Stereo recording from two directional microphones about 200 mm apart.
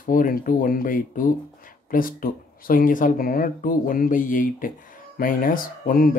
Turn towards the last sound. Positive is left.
turn(degrees=45)  # may be behind; listen again after turning